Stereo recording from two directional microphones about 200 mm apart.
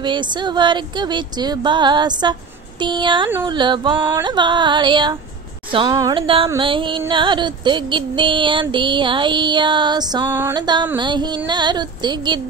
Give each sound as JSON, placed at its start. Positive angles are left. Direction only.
{"t": 0.0, "sound": "music", "side_deg": -20}
{"t": 10.2, "sound": "music", "side_deg": -10}
{"t": 10.5, "sound": "music", "side_deg": -20}